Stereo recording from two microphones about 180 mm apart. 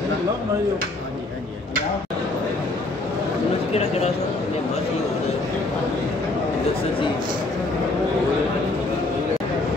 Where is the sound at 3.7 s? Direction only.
35° left (ahead or behind).